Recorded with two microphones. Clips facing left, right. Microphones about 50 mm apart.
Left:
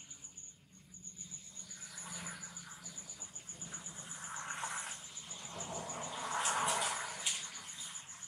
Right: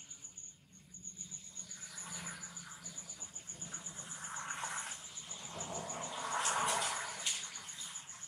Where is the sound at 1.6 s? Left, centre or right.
Centre.